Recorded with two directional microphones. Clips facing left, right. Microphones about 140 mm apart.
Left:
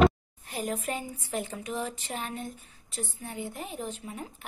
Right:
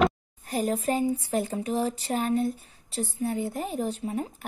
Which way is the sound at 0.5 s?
35° right (ahead or behind).